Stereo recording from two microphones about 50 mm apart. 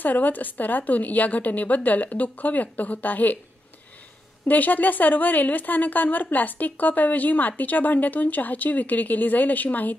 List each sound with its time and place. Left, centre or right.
0.0 s a woman's voice: left
4.5 s a woman's voice: left